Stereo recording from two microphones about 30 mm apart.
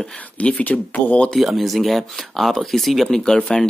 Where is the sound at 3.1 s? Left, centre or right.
Left.